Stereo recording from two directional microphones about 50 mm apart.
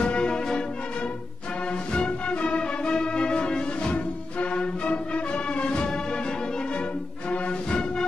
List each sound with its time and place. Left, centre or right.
0.0 s music: centre
1.7 s music: left
7.2 s music: left